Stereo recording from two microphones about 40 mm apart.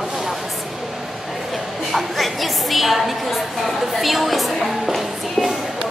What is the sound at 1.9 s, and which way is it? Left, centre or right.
A woman's voice, centre.